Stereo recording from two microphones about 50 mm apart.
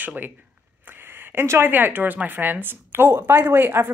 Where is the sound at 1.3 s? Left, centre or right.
Right.